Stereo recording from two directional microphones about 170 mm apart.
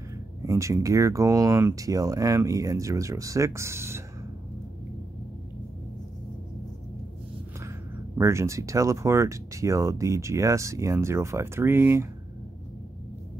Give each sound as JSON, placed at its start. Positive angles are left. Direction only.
{"t": 0.5, "sound": "speech", "side_deg": -20}
{"t": 8.2, "sound": "speech", "side_deg": -15}